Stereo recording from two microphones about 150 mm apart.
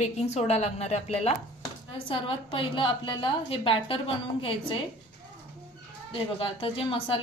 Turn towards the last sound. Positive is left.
turn(degrees=35)  # may be behind; listen again after turning